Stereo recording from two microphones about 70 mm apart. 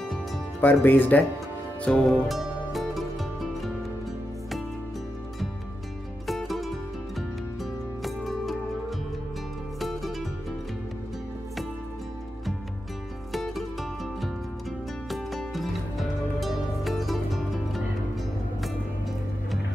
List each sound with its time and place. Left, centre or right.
0.6 s speech: left
1.8 s music: centre
2.2 s music: centre
6.2 s music: centre
8.0 s music: centre
9.8 s music: centre
13.3 s music: centre